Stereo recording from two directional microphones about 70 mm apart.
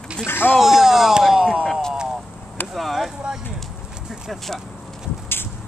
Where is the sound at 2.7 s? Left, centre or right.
Centre.